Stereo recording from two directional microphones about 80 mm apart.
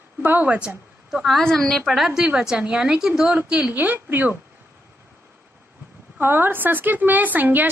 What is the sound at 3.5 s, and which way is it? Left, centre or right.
Speech, centre.